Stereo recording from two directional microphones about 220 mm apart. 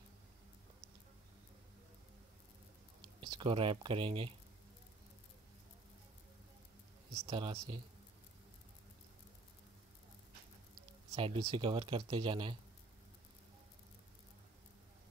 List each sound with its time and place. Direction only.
3.2 s speech: 20° right (ahead or behind)
7.2 s speech: 25° right (ahead or behind)
11.1 s speech: 25° right (ahead or behind)